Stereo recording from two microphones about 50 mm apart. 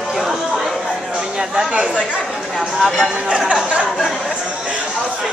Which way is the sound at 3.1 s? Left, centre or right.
Centre.